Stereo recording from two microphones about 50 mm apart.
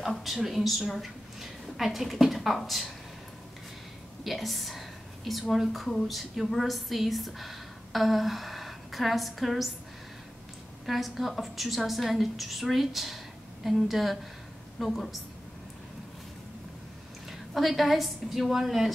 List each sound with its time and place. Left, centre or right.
0.0 s a woman's voice: centre
4.2 s a woman's voice: centre
10.9 s a woman's voice: centre
17.3 s a woman's voice: centre